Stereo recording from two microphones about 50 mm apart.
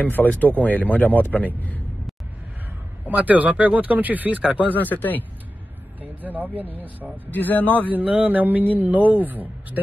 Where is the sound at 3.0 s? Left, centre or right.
Right.